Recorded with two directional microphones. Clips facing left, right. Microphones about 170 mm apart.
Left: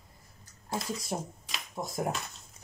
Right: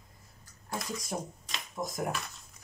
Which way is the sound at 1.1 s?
25° left (ahead or behind).